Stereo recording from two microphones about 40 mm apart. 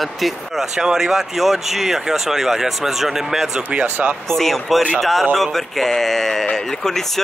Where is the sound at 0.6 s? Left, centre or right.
Centre.